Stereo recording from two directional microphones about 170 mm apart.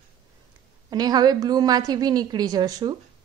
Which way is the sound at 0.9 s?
25° right (ahead or behind).